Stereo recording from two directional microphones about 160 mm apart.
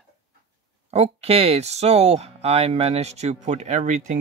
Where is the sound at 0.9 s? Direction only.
40° right (ahead or behind).